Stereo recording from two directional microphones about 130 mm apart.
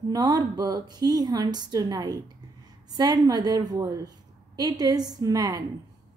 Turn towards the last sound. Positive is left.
turn(degrees=-30)  # may be behind; listen again after turning